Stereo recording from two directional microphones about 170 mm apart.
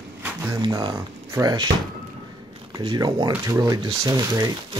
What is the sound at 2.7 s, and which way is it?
Speech, 25° right (ahead or behind).